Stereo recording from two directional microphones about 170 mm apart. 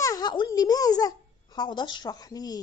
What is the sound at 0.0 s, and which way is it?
A child's voice, 25° left (ahead or behind).